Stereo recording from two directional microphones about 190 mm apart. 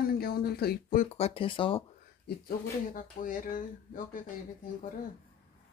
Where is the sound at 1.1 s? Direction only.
30° left (ahead or behind).